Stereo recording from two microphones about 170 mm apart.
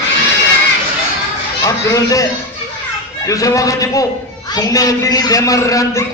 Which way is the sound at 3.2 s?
20° left (ahead or behind).